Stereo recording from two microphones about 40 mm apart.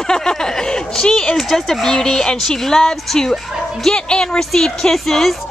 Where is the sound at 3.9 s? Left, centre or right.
Centre.